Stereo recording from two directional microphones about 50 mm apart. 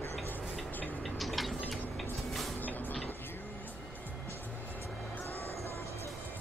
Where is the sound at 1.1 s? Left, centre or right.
Centre.